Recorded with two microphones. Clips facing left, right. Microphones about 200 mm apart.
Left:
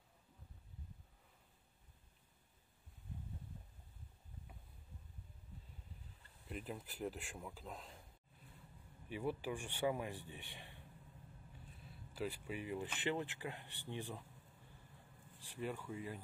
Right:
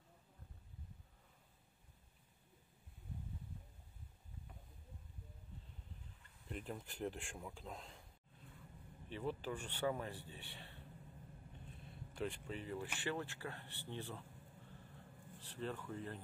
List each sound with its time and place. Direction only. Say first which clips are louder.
6.5 s speech: even; 5° left (ahead or behind)
9.1 s speech: left 2 dB; 10° left (ahead or behind)
11.8 s speech: even; 5° left (ahead or behind)
15.3 s speech: left 1 dB; 10° left (ahead or behind)